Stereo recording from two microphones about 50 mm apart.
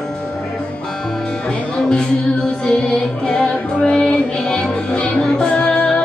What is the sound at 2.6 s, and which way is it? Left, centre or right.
Music, centre.